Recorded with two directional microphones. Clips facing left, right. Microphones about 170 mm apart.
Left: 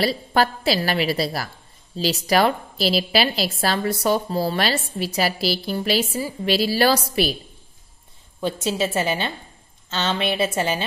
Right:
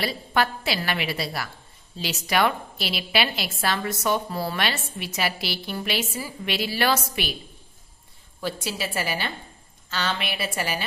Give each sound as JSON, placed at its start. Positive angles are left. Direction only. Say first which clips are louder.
{"t": 0.0, "sound": "a woman's voice", "louder": "left 5 dB", "side_deg": 35}
{"t": 8.4, "sound": "a woman's voice", "louder": "left 7 dB", "side_deg": 25}